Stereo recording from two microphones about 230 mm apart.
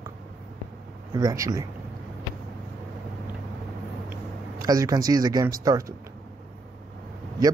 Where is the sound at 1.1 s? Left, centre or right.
Centre.